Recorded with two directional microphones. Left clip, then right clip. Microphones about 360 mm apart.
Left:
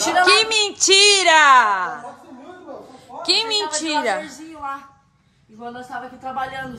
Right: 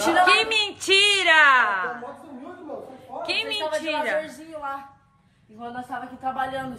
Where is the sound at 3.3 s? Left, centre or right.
Centre.